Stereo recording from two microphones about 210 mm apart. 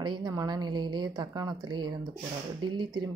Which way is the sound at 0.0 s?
20° right (ahead or behind).